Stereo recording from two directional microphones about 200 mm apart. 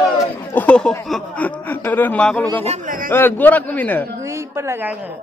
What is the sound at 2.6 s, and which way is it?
Speech, 35° right (ahead or behind).